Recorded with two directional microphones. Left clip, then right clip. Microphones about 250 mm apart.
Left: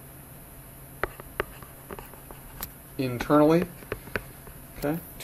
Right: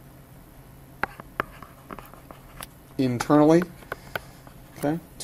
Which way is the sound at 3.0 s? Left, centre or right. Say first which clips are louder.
Right 2 dB; right.